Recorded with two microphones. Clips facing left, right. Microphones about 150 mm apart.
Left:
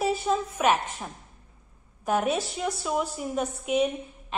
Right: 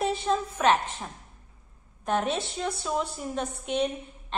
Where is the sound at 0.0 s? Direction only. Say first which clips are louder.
Left 1 dB; 5° left (ahead or behind).